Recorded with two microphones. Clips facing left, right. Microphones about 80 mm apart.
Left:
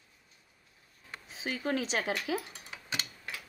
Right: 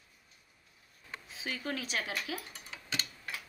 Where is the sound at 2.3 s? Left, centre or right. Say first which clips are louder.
Left 6 dB; centre.